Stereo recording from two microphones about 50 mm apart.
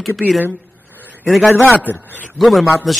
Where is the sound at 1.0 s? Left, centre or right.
Right.